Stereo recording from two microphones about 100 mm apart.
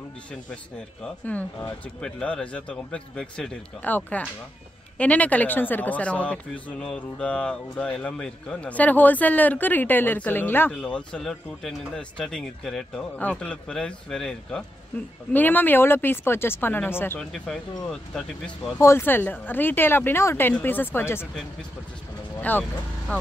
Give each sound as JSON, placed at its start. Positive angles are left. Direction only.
{"t": 0.3, "sound": "speech", "side_deg": 10}
{"t": 10.7, "sound": "speech", "side_deg": 10}
{"t": 15.3, "sound": "speech", "side_deg": 20}
{"t": 17.2, "sound": "speech", "side_deg": 5}
{"t": 18.8, "sound": "speech", "side_deg": 25}
{"t": 22.4, "sound": "speech", "side_deg": 20}